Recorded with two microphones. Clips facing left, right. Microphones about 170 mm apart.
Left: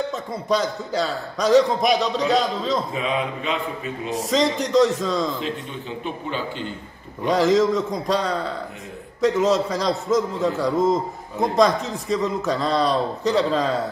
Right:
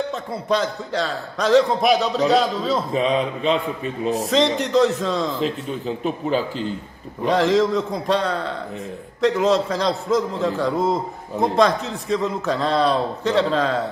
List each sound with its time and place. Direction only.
0.3 s a man's voice: centre (ahead or behind)
2.9 s a man's voice: 35° right (ahead or behind)
4.1 s a man's voice: centre (ahead or behind)
7.2 s a man's voice: centre (ahead or behind)